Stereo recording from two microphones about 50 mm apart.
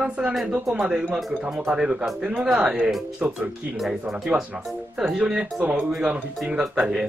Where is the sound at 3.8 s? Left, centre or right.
Centre.